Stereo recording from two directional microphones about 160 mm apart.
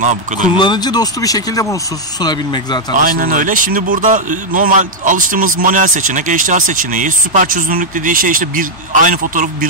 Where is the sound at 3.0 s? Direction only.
60° right (ahead or behind).